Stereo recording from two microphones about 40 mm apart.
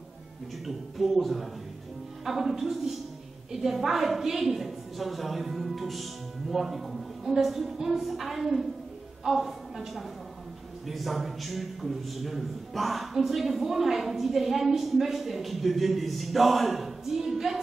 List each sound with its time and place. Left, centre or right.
0.7 s a man's voice: centre